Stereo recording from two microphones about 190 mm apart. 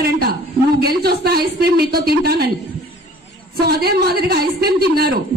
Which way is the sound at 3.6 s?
55° right (ahead or behind).